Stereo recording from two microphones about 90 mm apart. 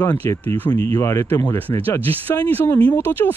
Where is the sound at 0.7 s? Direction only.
35° left (ahead or behind).